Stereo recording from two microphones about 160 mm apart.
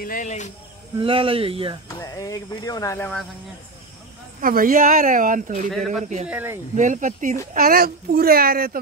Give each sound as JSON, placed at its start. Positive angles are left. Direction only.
{"t": 0.0, "sound": "speech", "side_deg": 55}
{"t": 0.9, "sound": "speech", "side_deg": -35}
{"t": 2.0, "sound": "speech", "side_deg": 20}
{"t": 4.4, "sound": "speech", "side_deg": -65}
{"t": 5.7, "sound": "a man's voice", "side_deg": 0}
{"t": 6.2, "sound": "speech", "side_deg": -10}
{"t": 6.7, "sound": "speech", "side_deg": -50}
{"t": 7.5, "sound": "speech", "side_deg": -65}